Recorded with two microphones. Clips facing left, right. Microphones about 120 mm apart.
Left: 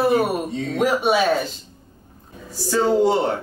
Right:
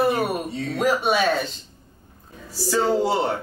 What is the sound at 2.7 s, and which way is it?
Speech, centre (ahead or behind).